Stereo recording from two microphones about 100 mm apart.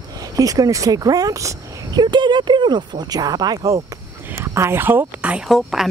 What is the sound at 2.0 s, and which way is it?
Speech, 50° right (ahead or behind).